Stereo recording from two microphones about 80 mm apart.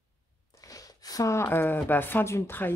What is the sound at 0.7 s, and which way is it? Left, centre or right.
Speech, left.